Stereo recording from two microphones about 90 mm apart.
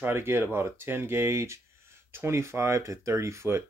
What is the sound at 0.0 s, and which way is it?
Speech, 25° right (ahead or behind).